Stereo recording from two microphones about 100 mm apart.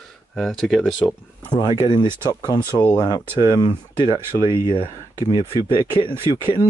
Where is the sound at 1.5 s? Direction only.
50° left (ahead or behind).